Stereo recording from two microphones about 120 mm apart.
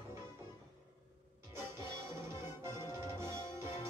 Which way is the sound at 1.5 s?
20° right (ahead or behind).